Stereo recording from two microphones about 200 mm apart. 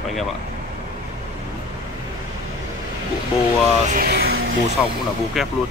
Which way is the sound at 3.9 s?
50° right (ahead or behind).